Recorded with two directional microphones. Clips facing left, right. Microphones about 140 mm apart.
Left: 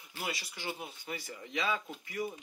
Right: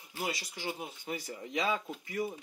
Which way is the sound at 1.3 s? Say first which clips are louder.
Right 2 dB; 45° right (ahead or behind).